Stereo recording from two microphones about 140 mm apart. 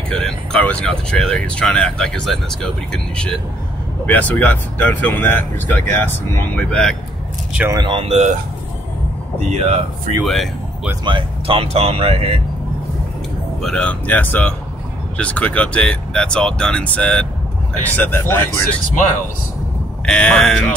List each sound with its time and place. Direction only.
0.1 s speech: 5° left (ahead or behind)
7.7 s speech: 35° right (ahead or behind)
9.5 s speech: 45° right (ahead or behind)
10.2 s speech: centre (ahead or behind)
11.1 s speech: 40° right (ahead or behind)
13.6 s speech: 5° left (ahead or behind)
20.1 s speech: 5° left (ahead or behind)